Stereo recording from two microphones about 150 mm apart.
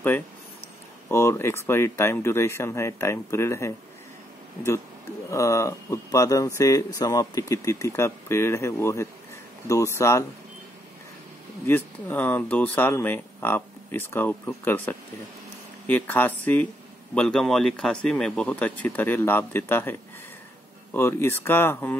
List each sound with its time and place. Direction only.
1.0 s speech: 15° left (ahead or behind)
5.3 s speech: 20° left (ahead or behind)
11.6 s speech: 15° left (ahead or behind)